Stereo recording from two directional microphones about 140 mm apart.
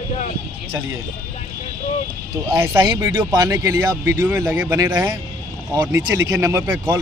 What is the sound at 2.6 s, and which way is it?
Speech, 25° right (ahead or behind).